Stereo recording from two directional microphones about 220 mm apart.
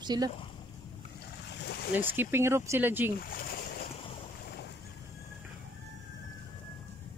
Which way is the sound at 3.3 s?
40° left (ahead or behind).